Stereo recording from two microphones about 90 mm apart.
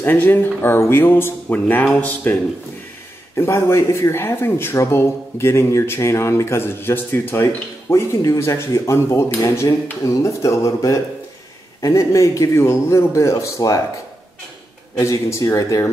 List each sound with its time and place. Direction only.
0.0 s speech: 25° left (ahead or behind)
3.3 s a man's voice: 30° left (ahead or behind)
15.0 s a man's voice: 35° left (ahead or behind)